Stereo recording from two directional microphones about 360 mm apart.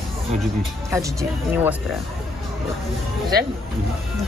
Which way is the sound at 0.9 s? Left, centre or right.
Centre.